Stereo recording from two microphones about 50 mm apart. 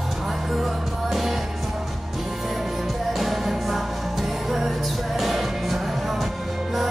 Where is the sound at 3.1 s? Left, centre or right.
Centre.